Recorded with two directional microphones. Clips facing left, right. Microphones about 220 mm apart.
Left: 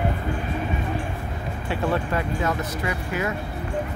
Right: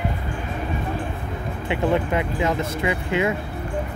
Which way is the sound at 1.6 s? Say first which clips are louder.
Right 3 dB; 20° right (ahead or behind).